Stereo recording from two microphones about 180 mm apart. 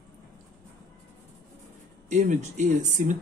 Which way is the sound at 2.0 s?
45° right (ahead or behind).